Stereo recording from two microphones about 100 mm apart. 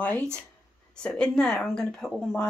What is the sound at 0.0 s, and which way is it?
A woman's voice, 15° left (ahead or behind).